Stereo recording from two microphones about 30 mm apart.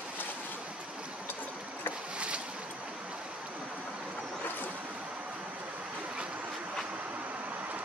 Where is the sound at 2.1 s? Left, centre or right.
Right.